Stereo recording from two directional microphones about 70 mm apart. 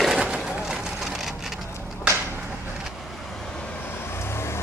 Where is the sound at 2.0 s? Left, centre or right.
Right.